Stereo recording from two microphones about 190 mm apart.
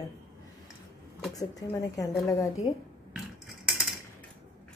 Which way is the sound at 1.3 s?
20° left (ahead or behind).